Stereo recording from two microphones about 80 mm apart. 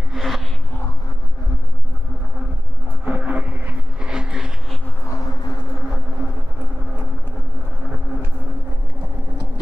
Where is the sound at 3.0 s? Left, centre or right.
Right.